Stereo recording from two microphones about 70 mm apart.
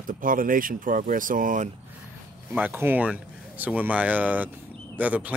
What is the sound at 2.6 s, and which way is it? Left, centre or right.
Speech, right.